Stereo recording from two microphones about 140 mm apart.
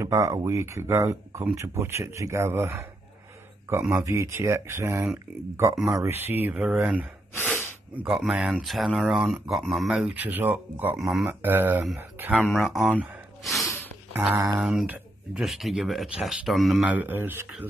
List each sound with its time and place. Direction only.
0.0 s speech: 20° right (ahead or behind)
4.0 s speech: 20° right (ahead or behind)
7.4 s snort: 10° left (ahead or behind)
7.9 s speech: 10° right (ahead or behind)
11.0 s speech: centre (ahead or behind)
11.2 s speech: 15° right (ahead or behind)
12.4 s speech: centre (ahead or behind)
12.9 s gasp: 5° right (ahead or behind)
14.3 s speech: 25° right (ahead or behind)
14.6 s speech: 5° right (ahead or behind)
16.9 s speech: 15° right (ahead or behind)